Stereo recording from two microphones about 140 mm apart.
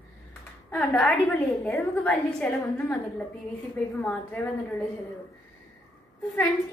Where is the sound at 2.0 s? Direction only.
10° left (ahead or behind).